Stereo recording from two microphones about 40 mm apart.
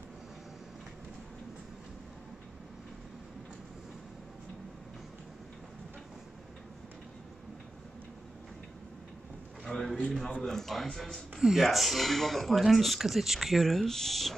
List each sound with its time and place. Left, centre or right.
9.7 s a sound: centre
10.4 s speech: centre
11.3 s speech: centre
13.6 s speech: centre